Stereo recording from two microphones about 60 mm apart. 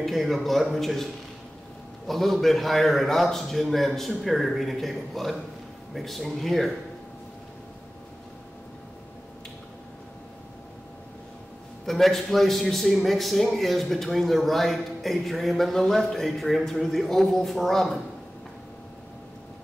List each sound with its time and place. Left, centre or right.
0.0 s a man's voice: centre
2.0 s a man's voice: centre
11.8 s a man's voice: centre